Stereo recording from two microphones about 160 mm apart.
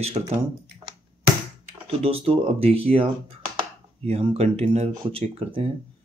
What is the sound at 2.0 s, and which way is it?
Speech, 35° right (ahead or behind).